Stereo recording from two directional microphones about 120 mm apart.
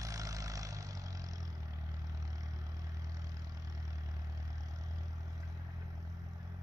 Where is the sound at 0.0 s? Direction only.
30° right (ahead or behind).